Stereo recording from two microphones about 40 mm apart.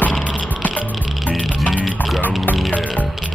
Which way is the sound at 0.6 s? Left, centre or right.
Left.